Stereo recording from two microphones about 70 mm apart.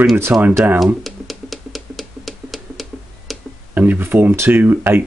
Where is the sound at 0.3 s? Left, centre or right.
Centre.